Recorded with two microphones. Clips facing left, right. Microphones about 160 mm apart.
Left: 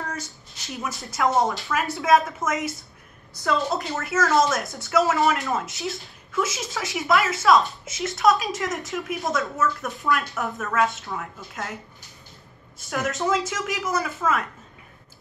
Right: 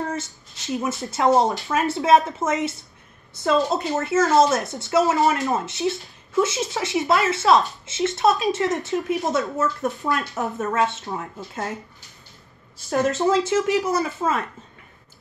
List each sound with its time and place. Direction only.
0.1 s a woman's voice: 25° right (ahead or behind)